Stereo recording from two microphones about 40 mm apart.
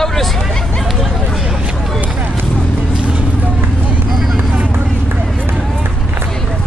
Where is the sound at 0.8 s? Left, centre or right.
Centre.